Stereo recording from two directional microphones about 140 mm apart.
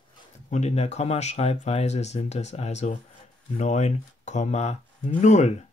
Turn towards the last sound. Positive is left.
turn(degrees=55)  # may be behind; listen again after turning